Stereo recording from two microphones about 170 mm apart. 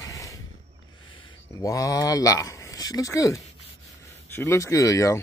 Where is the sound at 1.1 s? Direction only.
25° left (ahead or behind).